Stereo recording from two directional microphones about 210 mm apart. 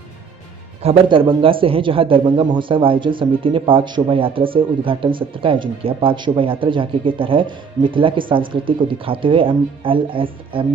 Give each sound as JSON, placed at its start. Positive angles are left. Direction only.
{"t": 0.8, "sound": "speech", "side_deg": -25}